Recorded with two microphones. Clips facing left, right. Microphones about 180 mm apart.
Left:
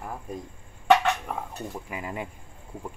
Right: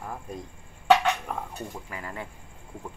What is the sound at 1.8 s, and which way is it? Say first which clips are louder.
Speech: left 3 dB; 15° left (ahead or behind).